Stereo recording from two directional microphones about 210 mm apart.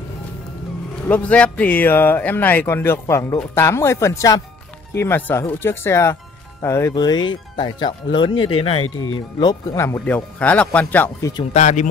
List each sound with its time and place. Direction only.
1.0 s speech: 5° left (ahead or behind); by 8.8 s 25° left (ahead or behind)
8.8 s speech: 75° left (ahead or behind)
9.4 s speech: 15° left (ahead or behind)
11.5 s speech: 35° left (ahead or behind)